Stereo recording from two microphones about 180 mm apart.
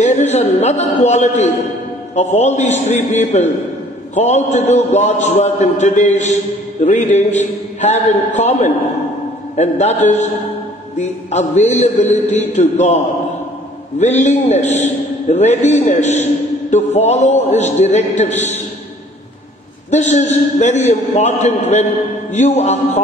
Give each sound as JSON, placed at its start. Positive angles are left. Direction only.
{"t": 0.0, "sound": "a man's voice", "side_deg": 40}
{"t": 19.9, "sound": "a man's voice", "side_deg": 40}